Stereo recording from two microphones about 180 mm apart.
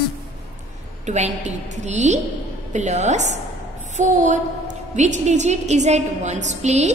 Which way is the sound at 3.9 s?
45° right (ahead or behind).